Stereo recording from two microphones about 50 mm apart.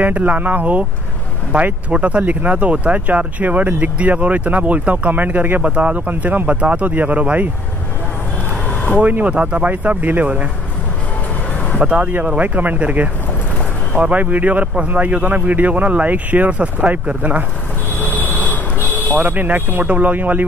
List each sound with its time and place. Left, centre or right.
0.0 s speech: right
5.6 s speech: right
9.0 s speech: right
11.8 s speech: right
17.9 s a sound: left
19.1 s speech: right